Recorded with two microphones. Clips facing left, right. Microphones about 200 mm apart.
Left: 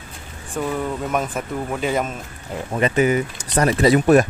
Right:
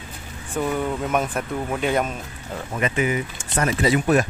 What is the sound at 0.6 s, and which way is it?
Speech, centre (ahead or behind).